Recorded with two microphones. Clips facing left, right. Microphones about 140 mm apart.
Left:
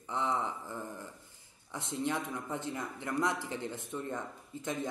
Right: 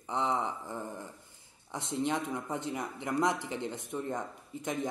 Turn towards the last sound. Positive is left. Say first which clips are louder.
# right 1 dB
turn(degrees=-15)  # may be behind; listen again after turning